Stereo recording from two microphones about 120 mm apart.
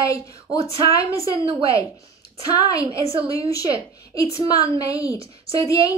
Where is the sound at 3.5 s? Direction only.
30° left (ahead or behind).